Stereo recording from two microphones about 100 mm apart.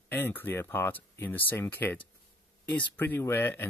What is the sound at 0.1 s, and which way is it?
Speech, 20° left (ahead or behind).